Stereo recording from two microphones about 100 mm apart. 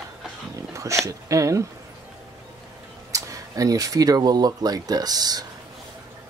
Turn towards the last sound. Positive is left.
turn(degrees=-40)  # may be behind; listen again after turning